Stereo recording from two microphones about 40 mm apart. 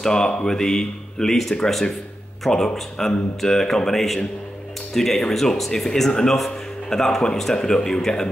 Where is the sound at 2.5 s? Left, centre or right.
Centre.